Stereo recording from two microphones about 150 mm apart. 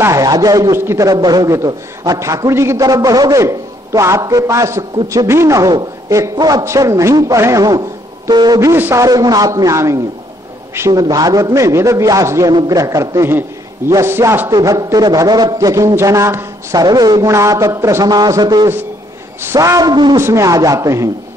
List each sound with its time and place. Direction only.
0.0 s a man's voice: 20° right (ahead or behind)